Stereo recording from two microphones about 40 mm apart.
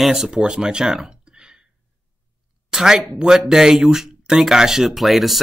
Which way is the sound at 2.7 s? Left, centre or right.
Centre.